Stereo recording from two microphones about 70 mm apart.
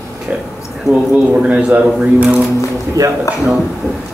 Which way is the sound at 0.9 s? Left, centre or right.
Left.